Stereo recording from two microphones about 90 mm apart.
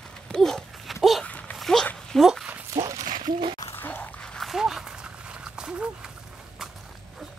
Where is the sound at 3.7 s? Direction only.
20° left (ahead or behind).